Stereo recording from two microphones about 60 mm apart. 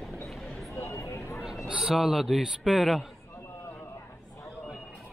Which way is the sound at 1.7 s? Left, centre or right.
Centre.